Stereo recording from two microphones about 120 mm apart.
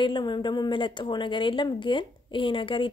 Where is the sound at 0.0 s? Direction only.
40° left (ahead or behind).